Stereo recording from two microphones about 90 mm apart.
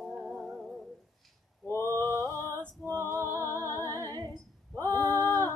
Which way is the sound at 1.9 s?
40° right (ahead or behind).